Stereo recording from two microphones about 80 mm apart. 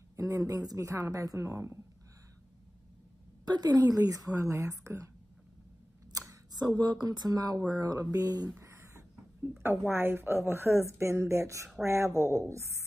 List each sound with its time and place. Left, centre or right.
0.1 s a woman's voice: right
3.4 s speech: right
6.5 s speech: right
8.5 s a sound: right
9.6 s a woman's voice: right